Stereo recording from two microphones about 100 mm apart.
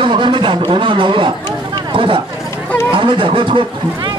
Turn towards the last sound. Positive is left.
turn(degrees=-60)  # may be behind; listen again after turning